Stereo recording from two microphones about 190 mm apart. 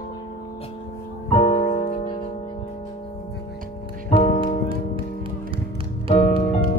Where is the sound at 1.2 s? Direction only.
35° left (ahead or behind).